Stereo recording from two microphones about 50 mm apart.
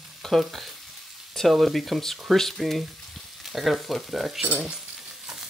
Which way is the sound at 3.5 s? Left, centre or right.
Centre.